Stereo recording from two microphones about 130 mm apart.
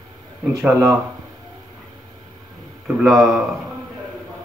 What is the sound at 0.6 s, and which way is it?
Speech, 20° right (ahead or behind).